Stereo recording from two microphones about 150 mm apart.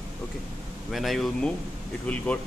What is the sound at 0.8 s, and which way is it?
Speech, centre (ahead or behind).